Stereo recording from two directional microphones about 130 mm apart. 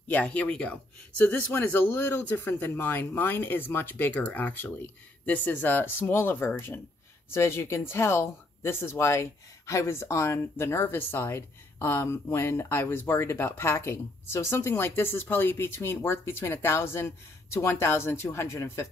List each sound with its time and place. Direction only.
0.1 s speech: 10° left (ahead or behind)